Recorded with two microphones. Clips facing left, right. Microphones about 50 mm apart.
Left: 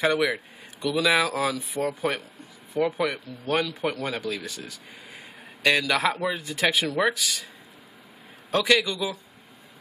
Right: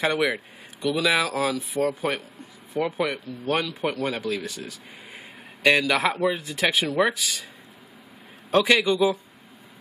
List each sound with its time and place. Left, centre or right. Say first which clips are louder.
0.0 s speech: even; centre
8.5 s a man's voice: right 2 dB; centre
8.7 s a man's voice: right 5 dB; right